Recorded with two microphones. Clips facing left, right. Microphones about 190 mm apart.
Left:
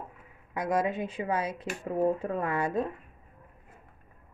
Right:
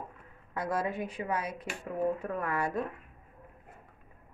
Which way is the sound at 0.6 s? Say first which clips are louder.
Left 4 dB; 15° left (ahead or behind).